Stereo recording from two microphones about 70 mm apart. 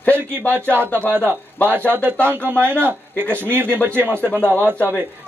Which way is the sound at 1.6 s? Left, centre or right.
Right.